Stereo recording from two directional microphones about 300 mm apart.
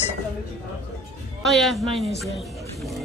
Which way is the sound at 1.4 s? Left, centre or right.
Centre.